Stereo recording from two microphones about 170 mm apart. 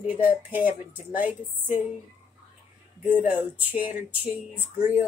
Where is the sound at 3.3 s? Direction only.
10° right (ahead or behind).